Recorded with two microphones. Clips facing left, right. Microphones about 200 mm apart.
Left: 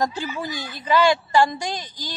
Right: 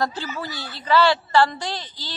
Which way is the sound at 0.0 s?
15° left (ahead or behind).